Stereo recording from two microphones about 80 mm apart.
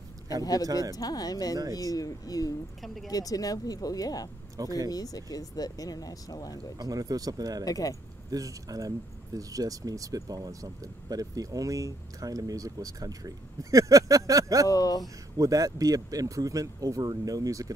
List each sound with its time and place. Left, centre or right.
0.4 s speech: left
0.7 s speech: right
0.9 s speech: left
2.8 s speech: centre
3.1 s speech: left
4.6 s speech: right
4.9 s speech: left
6.8 s speech: right
7.6 s speech: left
8.3 s speech: right
14.7 s speech: left
15.3 s speech: right